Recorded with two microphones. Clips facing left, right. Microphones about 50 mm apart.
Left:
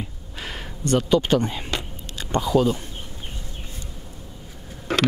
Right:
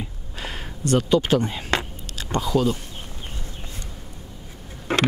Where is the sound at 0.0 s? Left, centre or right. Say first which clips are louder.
Right 1 dB; centre.